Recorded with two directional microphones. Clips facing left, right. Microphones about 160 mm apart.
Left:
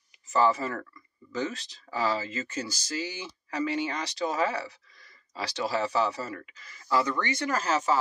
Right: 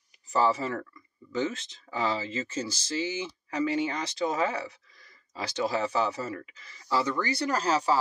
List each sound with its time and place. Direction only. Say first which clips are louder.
0.3 s speech: left 1 dB; 30° right (ahead or behind)
5.3 s speech: right 1 dB; 30° left (ahead or behind)
6.3 s speech: right 2 dB; 25° right (ahead or behind)